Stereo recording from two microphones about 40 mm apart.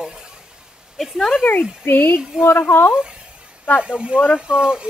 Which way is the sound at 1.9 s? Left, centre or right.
Left.